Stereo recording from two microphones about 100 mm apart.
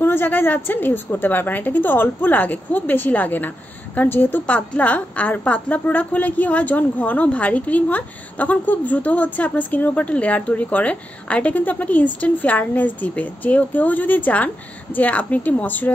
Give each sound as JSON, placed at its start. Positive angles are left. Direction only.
{"t": 0.0, "sound": "a woman's voice", "side_deg": 20}